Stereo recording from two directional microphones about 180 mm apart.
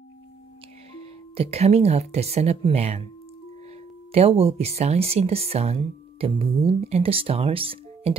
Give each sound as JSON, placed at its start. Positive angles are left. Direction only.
{"t": 0.9, "sound": "speech", "side_deg": -35}
{"t": 4.1, "sound": "speech", "side_deg": -35}